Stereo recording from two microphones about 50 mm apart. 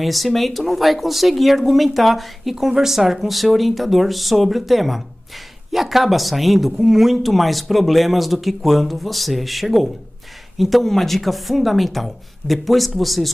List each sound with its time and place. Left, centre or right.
0.0 s speech: centre